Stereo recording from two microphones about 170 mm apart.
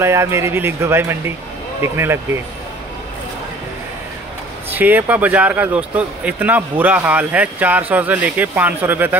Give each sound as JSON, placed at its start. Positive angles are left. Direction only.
{"t": 0.0, "sound": "speech", "side_deg": -15}
{"t": 4.7, "sound": "speech", "side_deg": -10}